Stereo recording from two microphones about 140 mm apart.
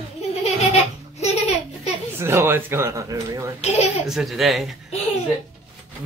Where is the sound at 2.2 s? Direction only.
20° right (ahead or behind).